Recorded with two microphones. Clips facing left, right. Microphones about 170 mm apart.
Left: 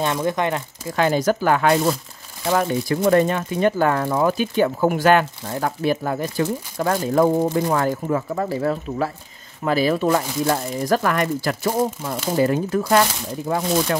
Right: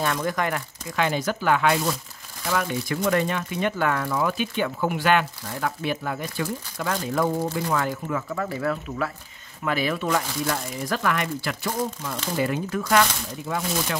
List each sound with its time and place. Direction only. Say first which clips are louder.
0.0 s speech: left 4 dB; 25° left (ahead or behind)
0.9 s speech: left 6 dB; 40° left (ahead or behind)